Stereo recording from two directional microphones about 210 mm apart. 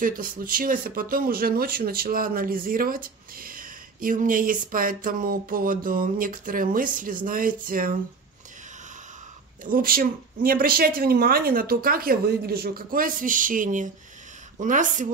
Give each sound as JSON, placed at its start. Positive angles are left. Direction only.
{"t": 0.0, "sound": "speech", "side_deg": -40}
{"t": 9.7, "sound": "speech", "side_deg": -45}